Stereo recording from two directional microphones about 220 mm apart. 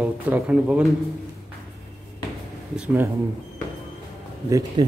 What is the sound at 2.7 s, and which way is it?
Speech, 5° right (ahead or behind).